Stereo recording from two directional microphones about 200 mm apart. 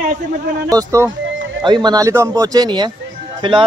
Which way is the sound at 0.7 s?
15° right (ahead or behind).